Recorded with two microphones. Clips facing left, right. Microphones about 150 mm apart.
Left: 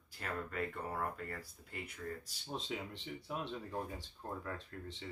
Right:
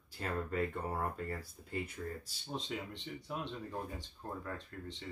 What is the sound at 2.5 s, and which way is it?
Speech, 5° left (ahead or behind).